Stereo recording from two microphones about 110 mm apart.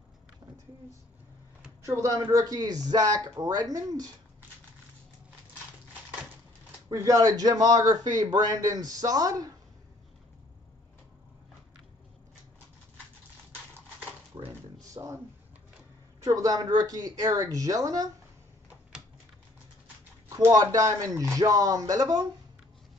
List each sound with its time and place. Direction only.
1.8 s a man's voice: 30° right (ahead or behind)
6.9 s a man's voice: 30° right (ahead or behind)
14.3 s a sound: 35° right (ahead or behind)
15.0 s speech: 35° right (ahead or behind)
16.3 s a man's voice: 30° right (ahead or behind)
20.2 s a man's voice: 30° right (ahead or behind)